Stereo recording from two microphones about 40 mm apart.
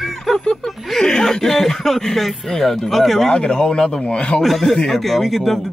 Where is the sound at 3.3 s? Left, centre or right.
Centre.